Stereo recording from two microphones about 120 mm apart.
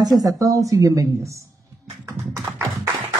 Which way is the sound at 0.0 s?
30° right (ahead or behind).